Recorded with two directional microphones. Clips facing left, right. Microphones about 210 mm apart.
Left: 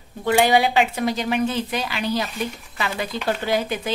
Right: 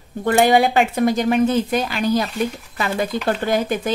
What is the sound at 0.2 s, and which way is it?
Speech, 50° right (ahead or behind).